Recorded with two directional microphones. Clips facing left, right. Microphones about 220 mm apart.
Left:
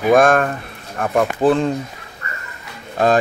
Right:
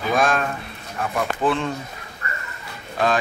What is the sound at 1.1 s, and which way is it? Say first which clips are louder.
Speech: left 7 dB; 40° left (ahead or behind).